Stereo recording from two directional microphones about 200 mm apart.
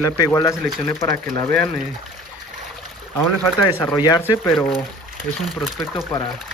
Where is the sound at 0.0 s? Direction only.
20° left (ahead or behind).